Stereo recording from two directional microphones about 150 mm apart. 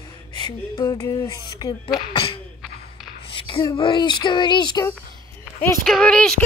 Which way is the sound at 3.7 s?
35° left (ahead or behind).